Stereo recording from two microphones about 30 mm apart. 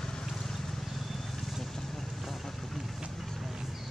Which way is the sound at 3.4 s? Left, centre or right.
Centre.